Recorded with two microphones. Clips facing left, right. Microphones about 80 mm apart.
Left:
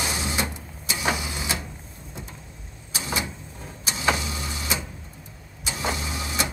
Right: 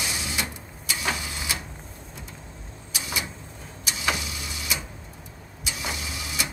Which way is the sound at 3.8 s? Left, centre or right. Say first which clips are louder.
Left 4 dB; left.